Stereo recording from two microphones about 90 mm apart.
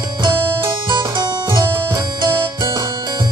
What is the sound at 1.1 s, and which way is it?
Harpsichord, 50° right (ahead or behind).